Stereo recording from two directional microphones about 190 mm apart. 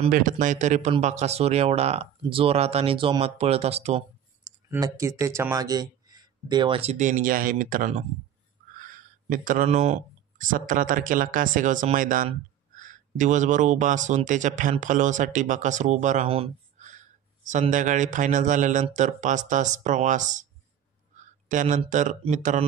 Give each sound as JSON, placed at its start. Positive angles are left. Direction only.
{"t": 0.1, "sound": "speech", "side_deg": -45}
{"t": 4.6, "sound": "speech", "side_deg": -15}
{"t": 21.5, "sound": "speech", "side_deg": -40}